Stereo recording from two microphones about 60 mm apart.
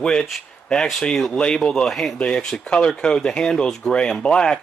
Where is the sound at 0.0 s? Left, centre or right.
Centre.